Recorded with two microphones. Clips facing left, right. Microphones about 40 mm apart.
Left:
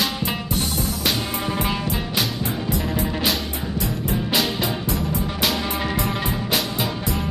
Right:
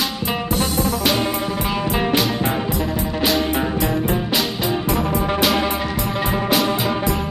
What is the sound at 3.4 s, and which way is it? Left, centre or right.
Music, right.